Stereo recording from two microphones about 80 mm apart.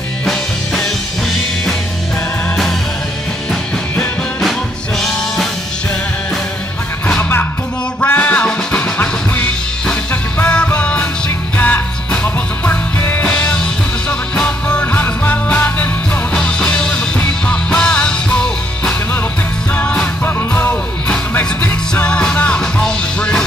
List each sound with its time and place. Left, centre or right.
0.2 s music: centre
7.2 s music: left; by 23.4 s centre